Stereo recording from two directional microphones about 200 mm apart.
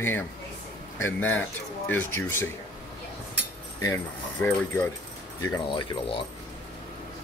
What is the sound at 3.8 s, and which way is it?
Speech, 15° left (ahead or behind).